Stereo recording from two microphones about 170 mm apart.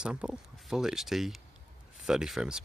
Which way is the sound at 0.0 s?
5° right (ahead or behind).